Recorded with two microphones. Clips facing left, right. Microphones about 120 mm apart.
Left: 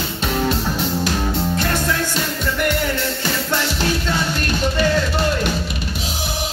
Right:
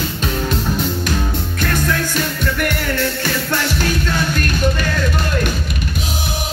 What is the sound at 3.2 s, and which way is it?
Music, 25° left (ahead or behind).